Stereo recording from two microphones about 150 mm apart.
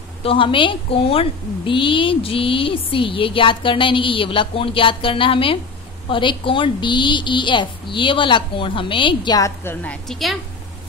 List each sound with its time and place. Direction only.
0.2 s speech: 35° left (ahead or behind)
9.6 s a woman's voice: 15° left (ahead or behind)
10.0 s a woman's voice: centre (ahead or behind)